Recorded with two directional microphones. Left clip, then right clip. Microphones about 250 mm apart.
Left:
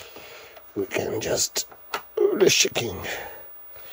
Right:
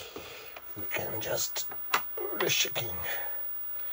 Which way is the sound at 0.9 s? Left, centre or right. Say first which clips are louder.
Left 7 dB; left.